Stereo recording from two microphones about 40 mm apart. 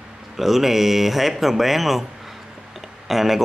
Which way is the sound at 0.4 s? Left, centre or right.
Centre.